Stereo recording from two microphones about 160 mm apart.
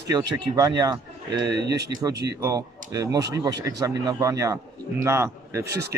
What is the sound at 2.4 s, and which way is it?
A man's voice, 20° right (ahead or behind).